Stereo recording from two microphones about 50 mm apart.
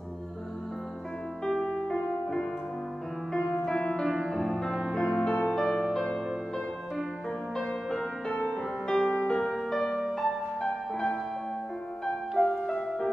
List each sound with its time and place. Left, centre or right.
1.4 s music: centre
7.5 s music: centre
9.4 s music: centre
12.4 s music: centre